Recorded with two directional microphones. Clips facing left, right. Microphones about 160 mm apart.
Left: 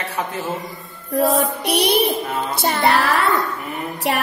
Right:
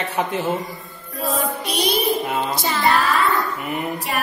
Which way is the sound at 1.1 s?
70° left (ahead or behind).